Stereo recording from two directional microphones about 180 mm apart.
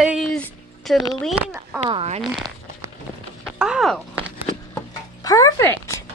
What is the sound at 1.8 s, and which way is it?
Speech, 35° right (ahead or behind).